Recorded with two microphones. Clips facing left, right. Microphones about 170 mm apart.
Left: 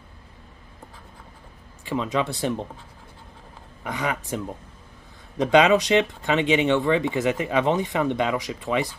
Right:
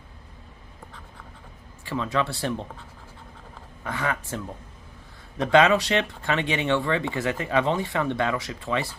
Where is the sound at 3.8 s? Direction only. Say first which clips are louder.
Left 1 dB; 15° left (ahead or behind).